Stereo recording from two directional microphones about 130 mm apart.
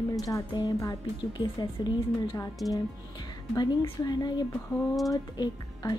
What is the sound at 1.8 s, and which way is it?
A woman's voice, 30° left (ahead or behind).